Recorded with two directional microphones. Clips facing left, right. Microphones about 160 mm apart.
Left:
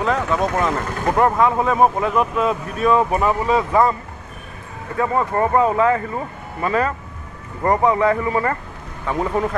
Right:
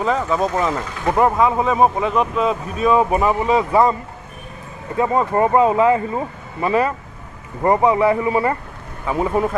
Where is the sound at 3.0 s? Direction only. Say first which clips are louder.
Right 1 dB; 15° right (ahead or behind).